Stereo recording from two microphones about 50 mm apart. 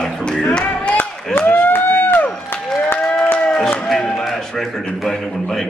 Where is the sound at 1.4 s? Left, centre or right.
Left.